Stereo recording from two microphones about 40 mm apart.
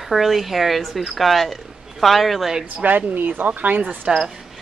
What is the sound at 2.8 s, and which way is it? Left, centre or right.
Speech, right.